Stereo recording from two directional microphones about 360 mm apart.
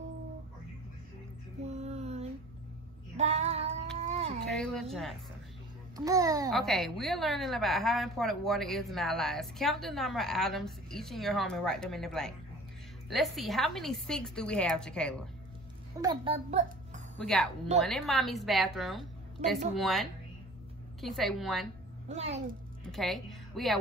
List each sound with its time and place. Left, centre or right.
1.6 s music: centre
3.2 s child singing: centre
4.0 s a sound: centre
4.5 s a woman's voice: centre
5.9 s a child's voice: centre
6.6 s a woman's voice: centre
16.0 s a child's voice: centre
17.2 s a woman's voice: centre
22.0 s a child's voice: centre
22.8 s a woman's voice: centre